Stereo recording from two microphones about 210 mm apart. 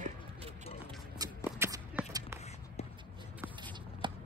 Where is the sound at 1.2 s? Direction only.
10° right (ahead or behind).